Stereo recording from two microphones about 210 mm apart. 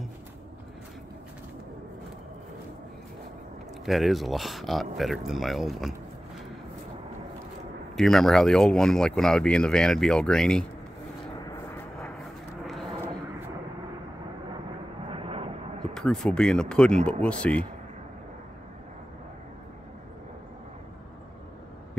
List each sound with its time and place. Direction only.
3.8 s speech: centre (ahead or behind)
7.9 s speech: centre (ahead or behind)
12.6 s vehicle: centre (ahead or behind)
15.0 s vehicle: 25° right (ahead or behind)
15.9 s speech: centre (ahead or behind)